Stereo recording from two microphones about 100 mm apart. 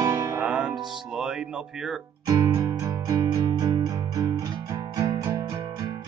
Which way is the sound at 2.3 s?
35° right (ahead or behind).